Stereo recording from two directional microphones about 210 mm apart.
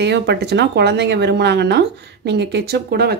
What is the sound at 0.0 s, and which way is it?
Speech, 55° right (ahead or behind).